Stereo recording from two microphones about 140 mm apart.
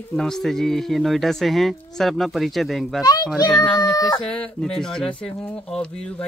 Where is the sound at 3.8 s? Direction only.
30° left (ahead or behind).